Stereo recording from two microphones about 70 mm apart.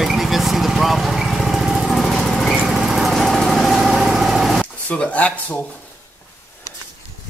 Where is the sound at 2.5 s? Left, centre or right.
Centre.